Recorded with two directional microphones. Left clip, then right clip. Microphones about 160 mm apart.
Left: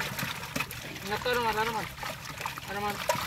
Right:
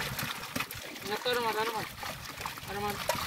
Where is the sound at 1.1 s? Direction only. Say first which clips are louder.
Left 2 dB; 30° right (ahead or behind).